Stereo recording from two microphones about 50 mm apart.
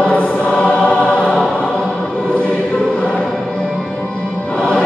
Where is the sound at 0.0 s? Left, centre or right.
Left.